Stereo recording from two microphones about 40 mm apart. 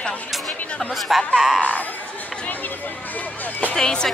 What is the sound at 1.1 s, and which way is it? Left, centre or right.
Speech, centre.